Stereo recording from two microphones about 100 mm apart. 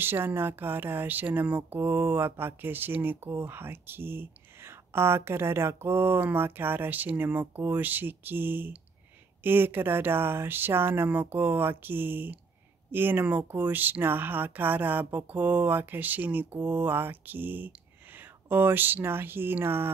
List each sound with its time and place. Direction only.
0.0 s speech: 20° right (ahead or behind)